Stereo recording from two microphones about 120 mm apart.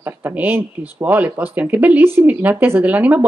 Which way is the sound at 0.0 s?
15° right (ahead or behind).